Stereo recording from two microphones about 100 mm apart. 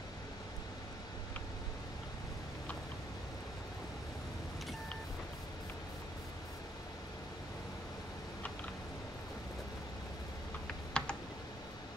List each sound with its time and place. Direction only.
10.9 s computer keyboard: 10° left (ahead or behind)